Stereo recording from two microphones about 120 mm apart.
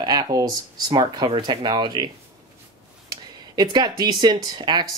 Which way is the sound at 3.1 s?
35° right (ahead or behind).